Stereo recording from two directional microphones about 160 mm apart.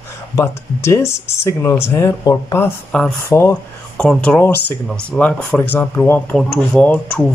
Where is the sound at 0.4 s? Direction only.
15° left (ahead or behind).